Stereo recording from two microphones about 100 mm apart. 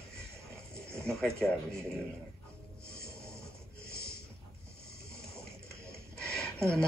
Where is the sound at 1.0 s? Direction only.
10° left (ahead or behind).